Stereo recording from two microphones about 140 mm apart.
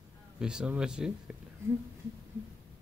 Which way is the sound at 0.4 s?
5° right (ahead or behind).